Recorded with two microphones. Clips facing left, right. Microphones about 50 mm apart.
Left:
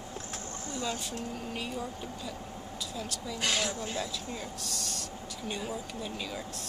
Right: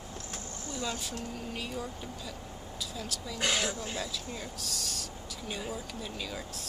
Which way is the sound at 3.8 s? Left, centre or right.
Centre.